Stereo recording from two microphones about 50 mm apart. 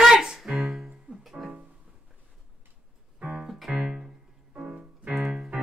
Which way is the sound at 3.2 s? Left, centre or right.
Centre.